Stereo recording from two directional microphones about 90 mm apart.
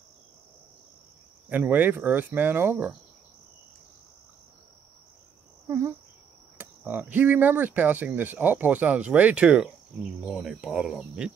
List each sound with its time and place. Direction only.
1.7 s speech: 20° right (ahead or behind)
5.7 s cricket: 35° right (ahead or behind)
6.6 s speech: 20° right (ahead or behind)